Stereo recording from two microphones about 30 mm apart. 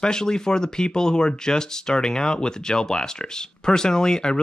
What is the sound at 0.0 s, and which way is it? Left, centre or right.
Speech, left.